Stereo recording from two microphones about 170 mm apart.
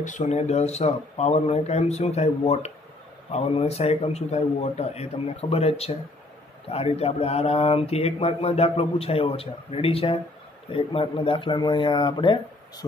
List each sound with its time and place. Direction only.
0.0 s speech: 45° left (ahead or behind); by 12.8 s 30° left (ahead or behind)